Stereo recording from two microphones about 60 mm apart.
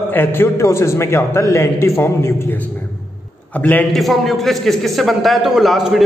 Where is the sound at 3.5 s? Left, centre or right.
Left.